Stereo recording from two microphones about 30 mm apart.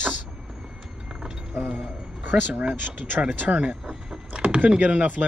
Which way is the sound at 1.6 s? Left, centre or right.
Centre.